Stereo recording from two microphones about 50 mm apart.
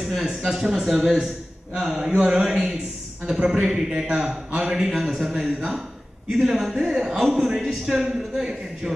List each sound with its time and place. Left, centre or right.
0.0 s speech: centre